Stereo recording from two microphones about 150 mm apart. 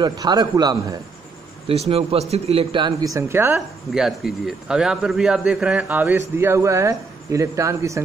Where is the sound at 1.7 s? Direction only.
40° right (ahead or behind); by 3.5 s 15° right (ahead or behind).